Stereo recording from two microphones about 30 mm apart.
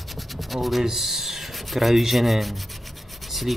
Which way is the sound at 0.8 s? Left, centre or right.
Centre.